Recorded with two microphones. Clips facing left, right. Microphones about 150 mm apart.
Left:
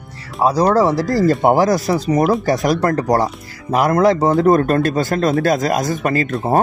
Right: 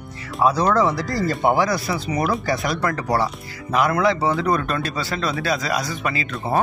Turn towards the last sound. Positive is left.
turn(degrees=45)  # may be behind; listen again after turning